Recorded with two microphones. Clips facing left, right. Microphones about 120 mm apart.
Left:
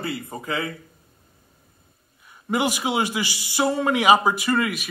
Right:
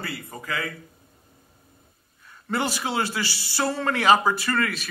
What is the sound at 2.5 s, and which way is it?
A man's voice, 15° left (ahead or behind).